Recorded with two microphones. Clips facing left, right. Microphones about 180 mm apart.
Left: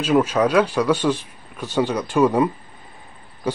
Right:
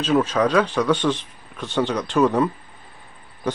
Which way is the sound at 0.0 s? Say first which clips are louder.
Left 1 dB; 10° left (ahead or behind).